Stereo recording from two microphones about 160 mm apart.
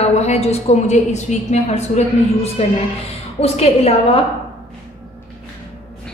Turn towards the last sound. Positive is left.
turn(degrees=40)  # may be behind; listen again after turning